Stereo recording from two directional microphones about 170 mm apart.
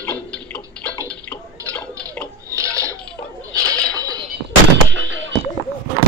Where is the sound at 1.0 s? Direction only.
5° left (ahead or behind).